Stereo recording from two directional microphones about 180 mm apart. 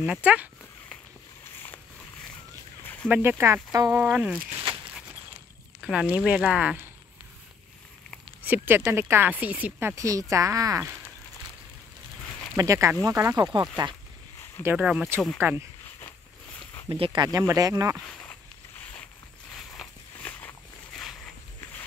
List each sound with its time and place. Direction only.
0.0 s speech: 5° right (ahead or behind)
2.8 s a sound: 10° left (ahead or behind)
3.1 s speech: 10° right (ahead or behind)
4.1 s speech: 5° right (ahead or behind)
5.8 s speech: 5° right (ahead or behind)
8.5 s speech: 10° right (ahead or behind)
12.5 s speech: 15° right (ahead or behind)
14.6 s speech: 10° right (ahead or behind)
16.9 s speech: 30° right (ahead or behind)
19.5 s a sound: 5° left (ahead or behind)